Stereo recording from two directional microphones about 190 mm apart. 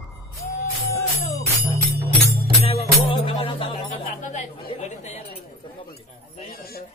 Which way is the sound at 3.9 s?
40° left (ahead or behind).